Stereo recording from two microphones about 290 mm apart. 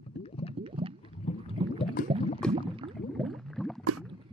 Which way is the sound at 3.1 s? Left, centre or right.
Centre.